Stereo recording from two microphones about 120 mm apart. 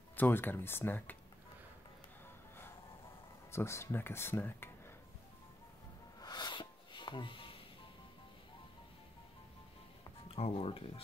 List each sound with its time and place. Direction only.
0.1 s speech: 15° left (ahead or behind)
3.5 s speech: 20° left (ahead or behind)
6.2 s music: 40° left (ahead or behind)
10.2 s speech: 50° left (ahead or behind)